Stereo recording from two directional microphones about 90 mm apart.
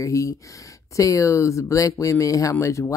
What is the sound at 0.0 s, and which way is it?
Speech, 35° left (ahead or behind).